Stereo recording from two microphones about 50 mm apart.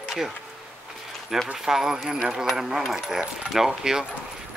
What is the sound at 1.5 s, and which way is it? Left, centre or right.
Speech, centre.